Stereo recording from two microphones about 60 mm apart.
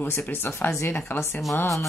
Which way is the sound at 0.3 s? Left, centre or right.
Left.